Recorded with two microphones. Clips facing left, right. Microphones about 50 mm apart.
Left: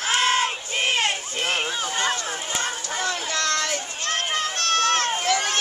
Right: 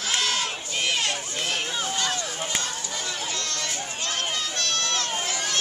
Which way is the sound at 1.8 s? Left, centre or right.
Left.